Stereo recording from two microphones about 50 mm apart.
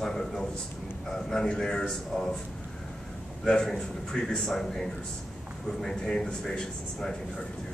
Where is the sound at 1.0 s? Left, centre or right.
Centre.